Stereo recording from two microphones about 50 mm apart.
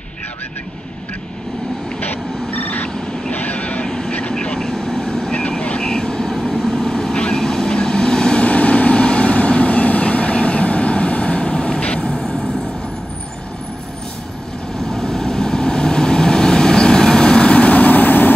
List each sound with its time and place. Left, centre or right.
2.0 s vehicle: left
2.9 s vehicle: centre
3.3 s vehicle: left
14.9 s vehicle: centre; by 18.3 s left